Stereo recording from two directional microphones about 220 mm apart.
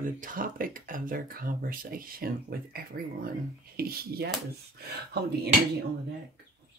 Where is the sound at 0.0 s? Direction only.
40° right (ahead or behind).